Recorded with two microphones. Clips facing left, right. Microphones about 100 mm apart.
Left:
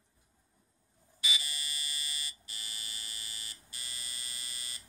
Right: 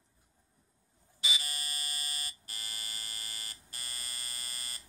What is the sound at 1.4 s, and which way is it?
Buzzer, 50° right (ahead or behind).